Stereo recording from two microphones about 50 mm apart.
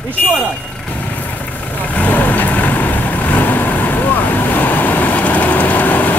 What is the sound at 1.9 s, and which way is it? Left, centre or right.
Vehicle, left.